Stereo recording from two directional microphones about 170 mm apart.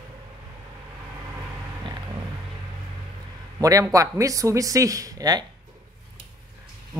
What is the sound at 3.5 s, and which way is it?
Speech, 20° right (ahead or behind).